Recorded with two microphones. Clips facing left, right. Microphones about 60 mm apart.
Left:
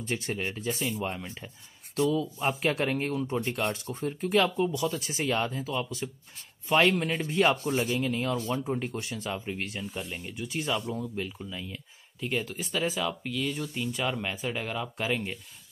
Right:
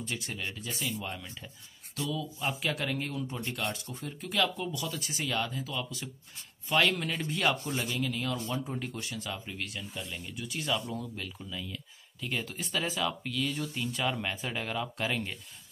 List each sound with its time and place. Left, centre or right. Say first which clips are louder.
0.0 s speech: left 5 dB; left; by 12.4 s centre
12.4 s speech: left 3 dB; centre